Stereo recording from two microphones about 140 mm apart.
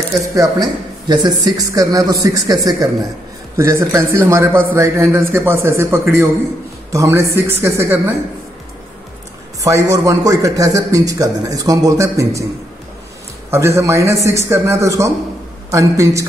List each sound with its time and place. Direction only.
0.3 s a man's voice: 25° right (ahead or behind)
9.6 s a man's voice: 25° right (ahead or behind)
13.5 s a man's voice: 20° right (ahead or behind)